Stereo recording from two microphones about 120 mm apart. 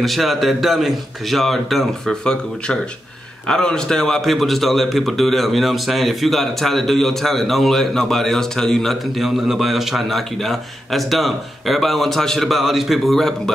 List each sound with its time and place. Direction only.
0.0 s a man's voice: centre (ahead or behind)